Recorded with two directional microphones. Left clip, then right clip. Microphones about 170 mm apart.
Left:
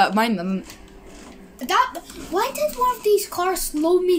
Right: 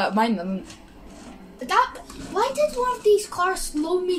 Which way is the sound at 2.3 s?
55° left (ahead or behind).